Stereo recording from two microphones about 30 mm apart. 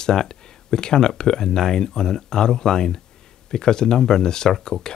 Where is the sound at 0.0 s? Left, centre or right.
Left.